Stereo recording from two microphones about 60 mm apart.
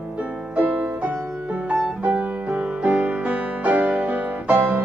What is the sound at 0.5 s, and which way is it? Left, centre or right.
Music, right.